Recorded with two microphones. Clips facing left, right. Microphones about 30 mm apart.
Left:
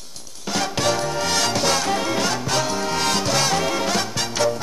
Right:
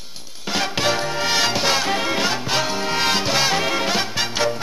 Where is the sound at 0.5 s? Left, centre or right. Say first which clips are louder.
Right 1 dB; right.